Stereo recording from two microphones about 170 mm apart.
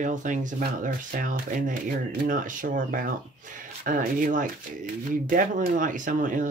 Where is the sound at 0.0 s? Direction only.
45° right (ahead or behind).